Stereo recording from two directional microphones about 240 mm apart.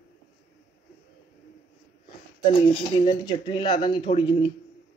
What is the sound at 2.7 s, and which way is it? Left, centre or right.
Speech, centre.